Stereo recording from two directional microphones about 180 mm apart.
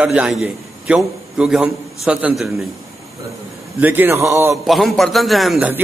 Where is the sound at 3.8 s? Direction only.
10° right (ahead or behind).